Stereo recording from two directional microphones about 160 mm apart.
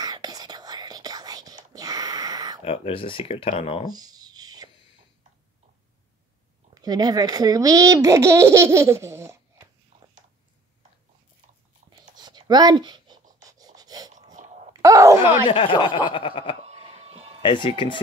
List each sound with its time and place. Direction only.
0.0 s whispering: 25° right (ahead or behind)
2.6 s speech: 35° left (ahead or behind)
3.9 s writing: 25° right (ahead or behind)
6.7 s a child's voice: 25° right (ahead or behind)
9.9 s cat: 50° right (ahead or behind)
11.9 s writing: 25° right (ahead or behind)
13.5 s a sound: 25° right (ahead or behind)
14.3 s wail: 50° right (ahead or behind)
14.7 s groan: 20° right (ahead or behind)
15.4 s speech: 30° left (ahead or behind)
16.6 s a sound: 40° right (ahead or behind)
17.4 s speech: 30° left (ahead or behind)